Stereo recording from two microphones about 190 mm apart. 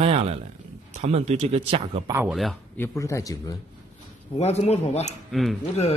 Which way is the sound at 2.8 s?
15° left (ahead or behind).